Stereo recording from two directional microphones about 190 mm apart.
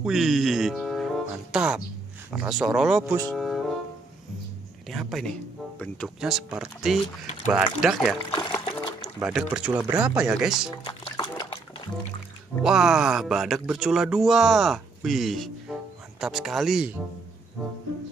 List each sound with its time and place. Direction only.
0.0 s speech: centre (ahead or behind)
3.0 s speech: 15° right (ahead or behind)
3.3 s speech: centre (ahead or behind)
4.8 s speech: centre (ahead or behind)
8.3 s pour: 20° left (ahead or behind)
9.2 s speech: 5° right (ahead or behind)
10.8 s music: 25° left (ahead or behind)
12.6 s speech: 5° right (ahead or behind)